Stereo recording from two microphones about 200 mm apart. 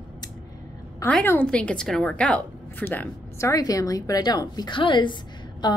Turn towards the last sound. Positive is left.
turn(degrees=20)  # may be behind; listen again after turning